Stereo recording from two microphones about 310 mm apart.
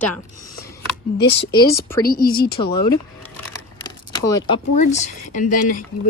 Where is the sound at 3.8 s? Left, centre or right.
Centre.